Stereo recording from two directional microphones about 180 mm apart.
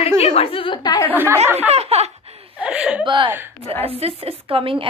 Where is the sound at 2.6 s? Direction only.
5° right (ahead or behind).